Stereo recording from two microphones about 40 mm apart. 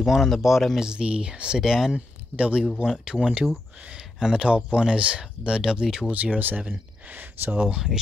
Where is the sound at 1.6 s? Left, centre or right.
Centre.